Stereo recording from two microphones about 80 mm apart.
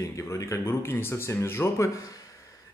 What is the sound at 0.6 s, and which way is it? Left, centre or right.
Speech, left.